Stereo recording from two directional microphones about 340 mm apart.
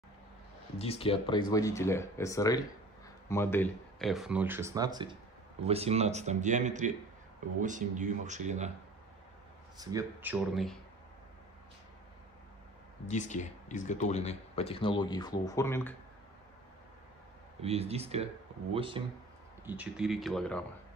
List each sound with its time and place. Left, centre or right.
0.7 s speech: centre
9.8 s speech: centre
13.0 s speech: left
17.6 s speech: centre
19.6 s speech: centre